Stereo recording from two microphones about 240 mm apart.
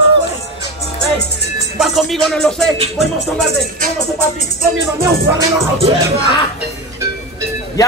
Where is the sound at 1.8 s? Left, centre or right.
Centre.